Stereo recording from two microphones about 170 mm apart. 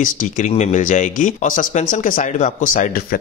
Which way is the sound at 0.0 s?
50° left (ahead or behind).